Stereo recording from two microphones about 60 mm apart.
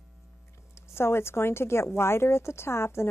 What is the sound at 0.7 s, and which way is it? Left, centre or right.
Speech, left.